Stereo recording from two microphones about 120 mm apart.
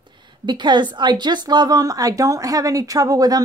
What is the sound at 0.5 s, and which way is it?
A woman's voice, 40° right (ahead or behind).